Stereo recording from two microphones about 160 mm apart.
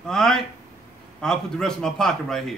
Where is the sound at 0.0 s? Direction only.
5° left (ahead or behind).